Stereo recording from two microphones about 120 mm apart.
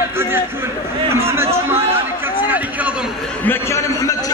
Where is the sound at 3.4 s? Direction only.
20° left (ahead or behind).